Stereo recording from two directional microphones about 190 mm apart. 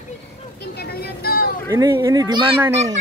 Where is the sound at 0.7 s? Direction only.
55° left (ahead or behind).